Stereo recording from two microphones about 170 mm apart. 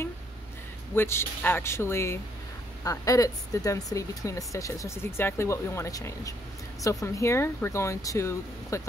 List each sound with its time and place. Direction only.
0.9 s speech: 15° left (ahead or behind)